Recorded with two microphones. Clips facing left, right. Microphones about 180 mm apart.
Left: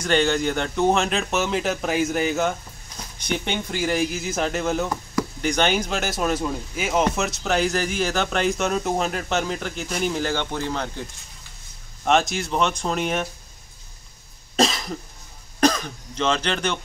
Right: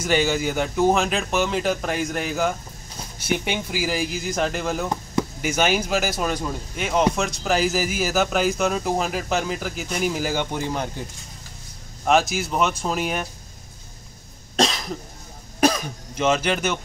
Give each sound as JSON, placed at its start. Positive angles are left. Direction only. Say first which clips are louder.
{"t": 0.0, "sound": "speech", "louder": "left 1 dB", "side_deg": -5}
{"t": 12.0, "sound": "speech", "louder": "right 1 dB", "side_deg": 0}
{"t": 14.6, "sound": "cough", "louder": "left 1 dB", "side_deg": 0}
{"t": 15.6, "sound": "speech", "louder": "even", "side_deg": -10}